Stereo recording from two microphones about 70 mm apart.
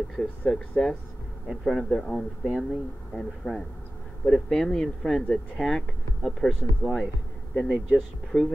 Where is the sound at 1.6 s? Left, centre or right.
Centre.